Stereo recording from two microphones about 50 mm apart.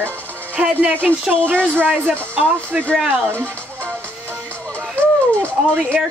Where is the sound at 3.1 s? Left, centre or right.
Right.